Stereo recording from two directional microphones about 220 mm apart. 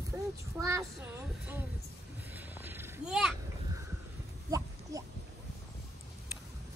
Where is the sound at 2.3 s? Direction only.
10° right (ahead or behind).